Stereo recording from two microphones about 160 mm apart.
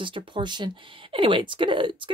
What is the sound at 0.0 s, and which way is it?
Speech, 30° right (ahead or behind).